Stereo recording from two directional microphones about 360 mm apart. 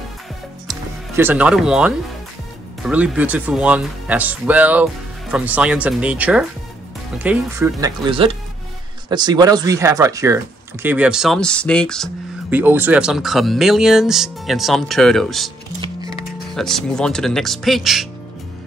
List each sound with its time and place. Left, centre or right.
0.7 s speech: centre
15.8 s music: centre
16.5 s speech: centre